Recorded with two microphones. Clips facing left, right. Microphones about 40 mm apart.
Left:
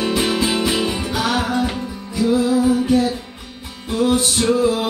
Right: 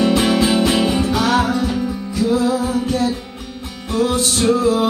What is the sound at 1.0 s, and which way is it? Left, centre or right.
Music, centre.